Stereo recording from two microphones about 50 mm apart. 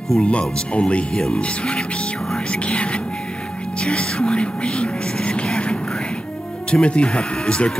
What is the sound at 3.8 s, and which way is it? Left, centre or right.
Music, left.